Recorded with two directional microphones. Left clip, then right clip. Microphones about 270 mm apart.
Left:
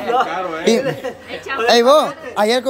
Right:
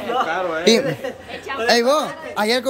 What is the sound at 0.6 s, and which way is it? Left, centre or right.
A man's voice, centre.